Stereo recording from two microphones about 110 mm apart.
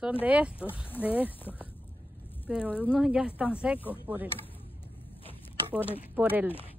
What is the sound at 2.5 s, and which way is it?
Speech, 10° right (ahead or behind).